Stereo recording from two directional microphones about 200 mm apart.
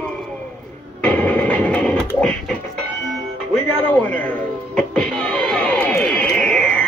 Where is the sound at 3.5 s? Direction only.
5° left (ahead or behind).